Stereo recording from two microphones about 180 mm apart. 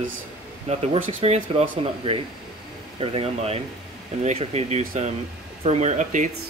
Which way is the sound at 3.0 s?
30° right (ahead or behind).